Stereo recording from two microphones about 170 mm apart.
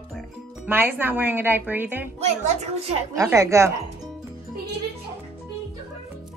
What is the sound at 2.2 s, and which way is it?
Speech, 40° right (ahead or behind).